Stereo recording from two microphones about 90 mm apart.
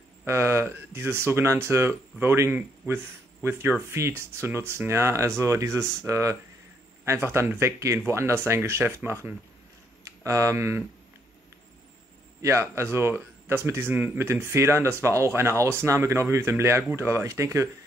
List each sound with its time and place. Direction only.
0.2 s speech: 30° right (ahead or behind)
12.4 s speech: 30° right (ahead or behind)